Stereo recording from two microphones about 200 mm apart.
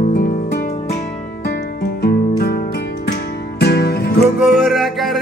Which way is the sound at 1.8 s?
50° left (ahead or behind).